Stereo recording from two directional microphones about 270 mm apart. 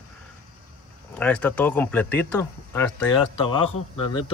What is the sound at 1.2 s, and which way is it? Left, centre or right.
Speech, centre.